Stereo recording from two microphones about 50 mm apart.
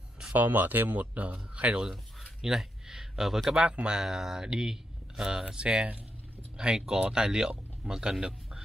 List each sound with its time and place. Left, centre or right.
0.3 s speech: right
2.4 s a sound: centre
3.5 s speech: centre